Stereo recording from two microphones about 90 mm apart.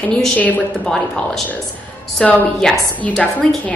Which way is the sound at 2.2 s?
15° left (ahead or behind).